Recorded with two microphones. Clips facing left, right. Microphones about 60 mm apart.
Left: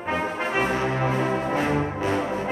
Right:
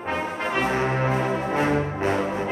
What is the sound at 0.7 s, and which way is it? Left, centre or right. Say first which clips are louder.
Music: right 1 dB; right.